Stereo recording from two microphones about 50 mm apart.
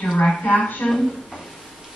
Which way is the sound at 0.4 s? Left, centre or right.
Left.